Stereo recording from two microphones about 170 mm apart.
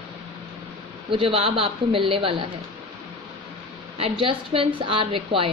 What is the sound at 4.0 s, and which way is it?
A woman's voice, 30° right (ahead or behind).